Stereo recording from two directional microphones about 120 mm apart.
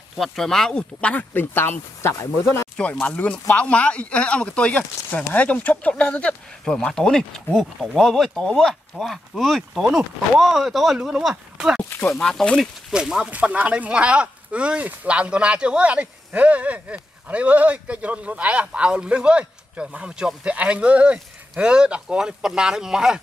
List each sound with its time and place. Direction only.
0.2 s speech: 5° left (ahead or behind); by 2.6 s 20° left (ahead or behind)
2.8 s speech: 10° left (ahead or behind); by 23.2 s 5° right (ahead or behind)